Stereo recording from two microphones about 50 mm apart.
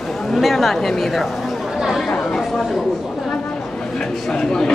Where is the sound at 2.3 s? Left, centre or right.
Centre.